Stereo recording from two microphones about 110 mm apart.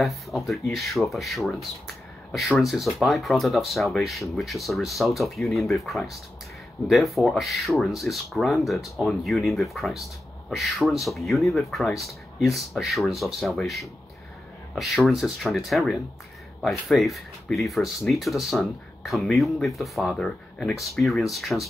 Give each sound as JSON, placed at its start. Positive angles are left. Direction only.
{"t": 0.0, "sound": "speech", "side_deg": 0}